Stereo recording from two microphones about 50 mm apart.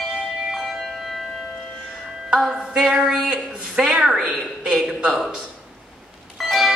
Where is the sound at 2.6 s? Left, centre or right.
Centre.